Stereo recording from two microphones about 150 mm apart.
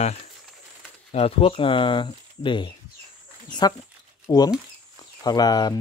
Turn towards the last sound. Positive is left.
turn(degrees=25)  # may be behind; listen again after turning